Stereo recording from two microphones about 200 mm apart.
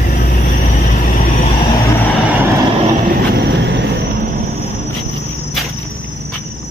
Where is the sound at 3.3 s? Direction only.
60° right (ahead or behind).